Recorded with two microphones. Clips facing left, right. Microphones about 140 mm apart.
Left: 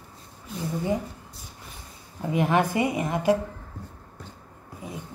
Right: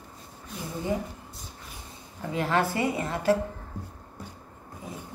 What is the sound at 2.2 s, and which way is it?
A woman's voice, 15° left (ahead or behind).